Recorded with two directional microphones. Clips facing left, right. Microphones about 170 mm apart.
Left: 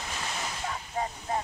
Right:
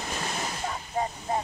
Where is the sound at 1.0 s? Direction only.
35° right (ahead or behind).